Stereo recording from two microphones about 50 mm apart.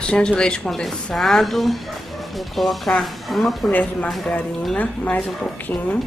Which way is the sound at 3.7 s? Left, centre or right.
Left.